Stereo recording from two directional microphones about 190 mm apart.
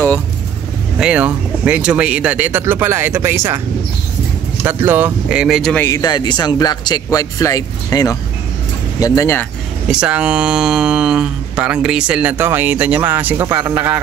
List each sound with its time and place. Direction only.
0.9 s speech: 5° right (ahead or behind)
4.6 s speech: 10° right (ahead or behind)
5.9 s speech: 20° left (ahead or behind)
9.8 s speech: 5° right (ahead or behind)